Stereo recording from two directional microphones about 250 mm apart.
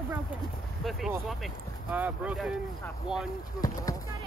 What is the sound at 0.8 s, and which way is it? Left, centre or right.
Speech, centre.